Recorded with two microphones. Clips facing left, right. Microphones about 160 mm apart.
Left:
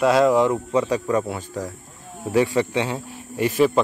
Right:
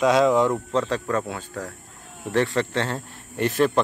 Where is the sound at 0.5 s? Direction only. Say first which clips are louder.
Left 3 dB; 15° left (ahead or behind).